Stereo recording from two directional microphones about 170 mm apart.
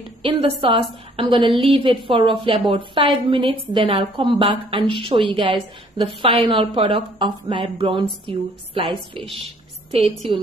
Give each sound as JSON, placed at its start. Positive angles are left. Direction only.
{"t": 0.4, "sound": "a woman's voice", "side_deg": -30}
{"t": 9.8, "sound": "a woman's voice", "side_deg": -35}